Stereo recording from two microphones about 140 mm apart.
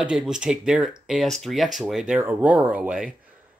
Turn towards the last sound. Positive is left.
turn(degrees=-5)  # may be behind; listen again after turning